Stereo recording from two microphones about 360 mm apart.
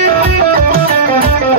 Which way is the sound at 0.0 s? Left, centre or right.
Right.